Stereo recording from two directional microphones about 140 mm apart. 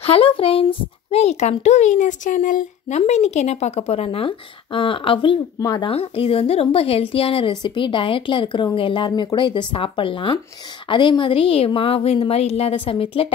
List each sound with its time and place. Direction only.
0.0 s speech: 45° left (ahead or behind); by 3.0 s 65° left (ahead or behind)
3.0 s speech: 50° left (ahead or behind)
5.6 s speech: 25° left (ahead or behind)
5.9 s a woman's voice: 40° left (ahead or behind)